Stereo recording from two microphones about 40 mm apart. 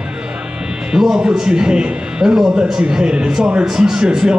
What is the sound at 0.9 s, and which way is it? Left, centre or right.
A man's voice, centre.